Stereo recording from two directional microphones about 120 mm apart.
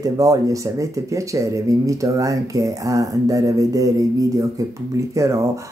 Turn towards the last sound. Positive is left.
turn(degrees=-25)  # may be behind; listen again after turning